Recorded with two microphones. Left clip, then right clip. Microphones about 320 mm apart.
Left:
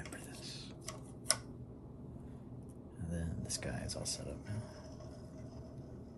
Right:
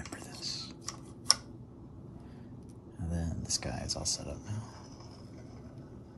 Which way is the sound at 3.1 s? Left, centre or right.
Centre.